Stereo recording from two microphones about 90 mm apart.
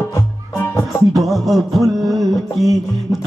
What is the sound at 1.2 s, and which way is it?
Music, centre (ahead or behind).